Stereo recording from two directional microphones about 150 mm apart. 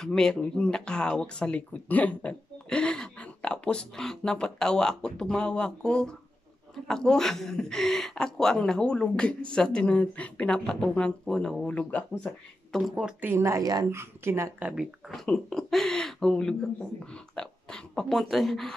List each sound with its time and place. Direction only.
0.0 s speech: 5° left (ahead or behind)
13.3 s a woman's voice: 20° right (ahead or behind)
14.7 s speech: 5° right (ahead or behind)